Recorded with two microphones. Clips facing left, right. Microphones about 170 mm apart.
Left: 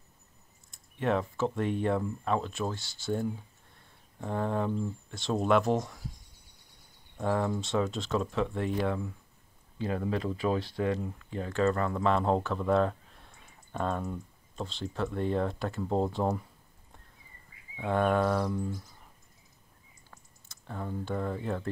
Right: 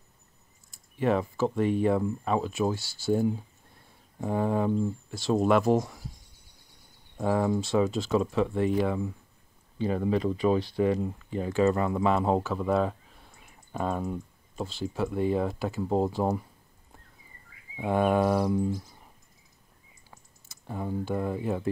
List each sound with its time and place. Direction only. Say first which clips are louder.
0.7 s speech: right 3 dB; 5° right (ahead or behind)
7.2 s speech: right 4 dB; 5° right (ahead or behind)
17.7 s cricket: right 2 dB; 10° right (ahead or behind)
20.1 s typing: right 2 dB; 10° right (ahead or behind)